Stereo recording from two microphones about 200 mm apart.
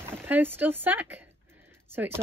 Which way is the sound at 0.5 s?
10° right (ahead or behind).